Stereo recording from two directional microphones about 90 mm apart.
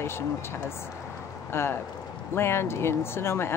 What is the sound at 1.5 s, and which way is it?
Speech, 30° left (ahead or behind).